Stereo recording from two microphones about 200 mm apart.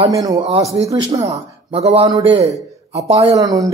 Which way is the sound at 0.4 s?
30° right (ahead or behind).